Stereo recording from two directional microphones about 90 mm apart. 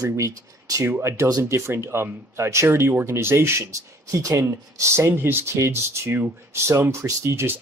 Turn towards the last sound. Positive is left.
turn(degrees=-30)  # may be behind; listen again after turning